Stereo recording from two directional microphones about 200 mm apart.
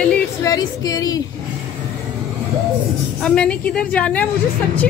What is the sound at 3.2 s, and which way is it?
A woman's voice, 5° left (ahead or behind).